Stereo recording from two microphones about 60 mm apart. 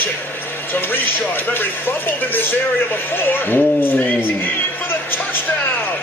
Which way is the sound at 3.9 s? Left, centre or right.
Left.